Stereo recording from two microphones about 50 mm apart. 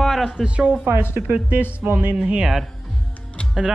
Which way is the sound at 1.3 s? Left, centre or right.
Right.